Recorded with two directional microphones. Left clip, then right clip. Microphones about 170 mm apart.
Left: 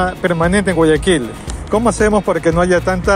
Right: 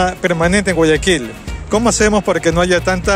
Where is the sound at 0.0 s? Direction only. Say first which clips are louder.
Right 1 dB; 55° right (ahead or behind).